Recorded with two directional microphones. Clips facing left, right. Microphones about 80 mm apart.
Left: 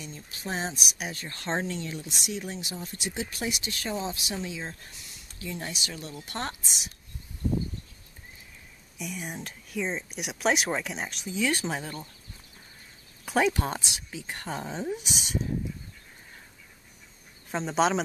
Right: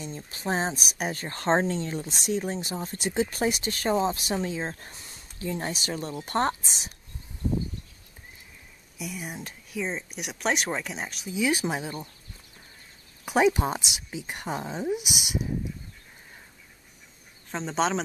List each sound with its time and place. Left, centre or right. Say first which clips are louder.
0.0 s speech: right 5 dB; right
8.9 s speech: even; centre
13.2 s speech: right 3 dB; centre
17.5 s speech: left 1 dB; centre